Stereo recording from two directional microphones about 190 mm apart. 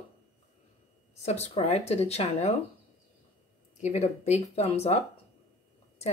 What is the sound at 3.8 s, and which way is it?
A woman's voice, 35° left (ahead or behind).